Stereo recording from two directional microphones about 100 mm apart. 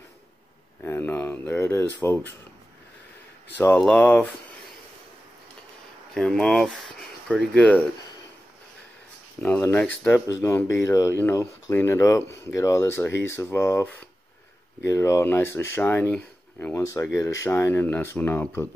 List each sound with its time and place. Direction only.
0.8 s speech: 20° left (ahead or behind)
3.5 s speech: 15° left (ahead or behind)
6.1 s speech: 5° left (ahead or behind)
7.2 s speech: 10° left (ahead or behind)
9.4 s speech: 20° left (ahead or behind)
10.2 s speech: 35° left (ahead or behind)
16.1 s a sound: 15° left (ahead or behind)
16.7 s speech: 30° left (ahead or behind)